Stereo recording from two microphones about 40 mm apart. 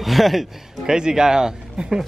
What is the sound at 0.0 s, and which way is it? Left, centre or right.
Speech, centre.